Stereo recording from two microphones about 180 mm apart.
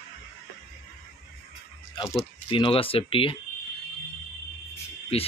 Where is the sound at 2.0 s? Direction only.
25° left (ahead or behind).